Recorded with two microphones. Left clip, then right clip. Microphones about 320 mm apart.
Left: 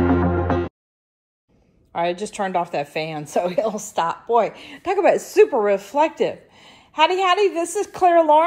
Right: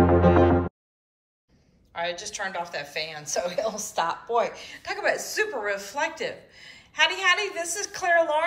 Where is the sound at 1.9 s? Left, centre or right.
Centre.